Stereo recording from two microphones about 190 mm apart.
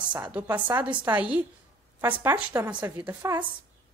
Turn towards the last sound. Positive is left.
turn(degrees=-15)  # may be behind; listen again after turning